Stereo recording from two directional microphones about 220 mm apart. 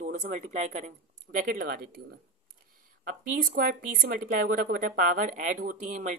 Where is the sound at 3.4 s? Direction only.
40° right (ahead or behind).